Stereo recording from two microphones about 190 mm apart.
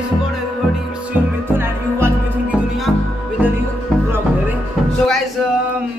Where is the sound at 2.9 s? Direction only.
5° left (ahead or behind).